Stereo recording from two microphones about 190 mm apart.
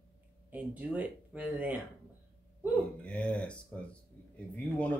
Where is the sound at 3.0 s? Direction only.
5° left (ahead or behind).